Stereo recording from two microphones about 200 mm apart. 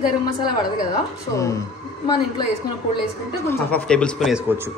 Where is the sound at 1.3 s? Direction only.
15° left (ahead or behind).